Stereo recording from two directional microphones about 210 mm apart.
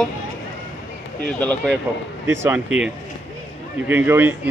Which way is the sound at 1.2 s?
5° left (ahead or behind).